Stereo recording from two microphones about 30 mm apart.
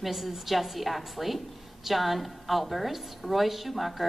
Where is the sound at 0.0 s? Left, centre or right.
Centre.